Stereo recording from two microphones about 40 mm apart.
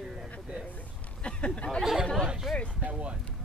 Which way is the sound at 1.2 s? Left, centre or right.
Left.